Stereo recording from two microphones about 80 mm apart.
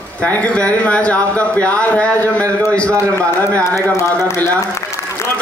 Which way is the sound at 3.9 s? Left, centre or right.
Left.